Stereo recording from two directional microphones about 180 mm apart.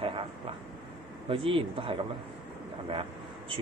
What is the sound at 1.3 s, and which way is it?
A man's voice, 30° right (ahead or behind).